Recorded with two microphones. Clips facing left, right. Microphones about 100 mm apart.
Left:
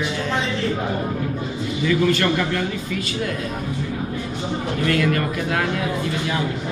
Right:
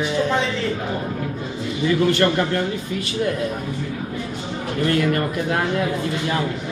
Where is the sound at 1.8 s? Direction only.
35° right (ahead or behind).